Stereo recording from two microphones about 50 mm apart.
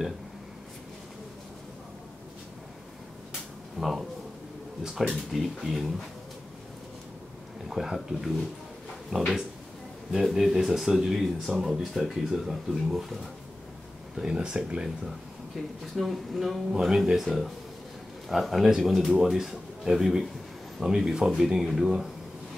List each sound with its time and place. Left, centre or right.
3.8 s a man's voice: centre
5.1 s a man's voice: centre
7.6 s a man's voice: centre
14.3 s speech: centre
15.0 s a man's voice: centre